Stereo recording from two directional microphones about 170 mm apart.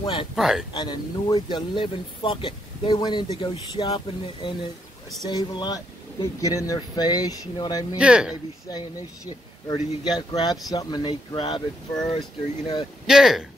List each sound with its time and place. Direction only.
0.0 s speech: 30° left (ahead or behind)
0.4 s speech: centre (ahead or behind)
0.7 s speech: 25° left (ahead or behind)
8.0 s speech: 5° right (ahead or behind)
8.6 s speech: 20° left (ahead or behind)
13.0 s speech: centre (ahead or behind)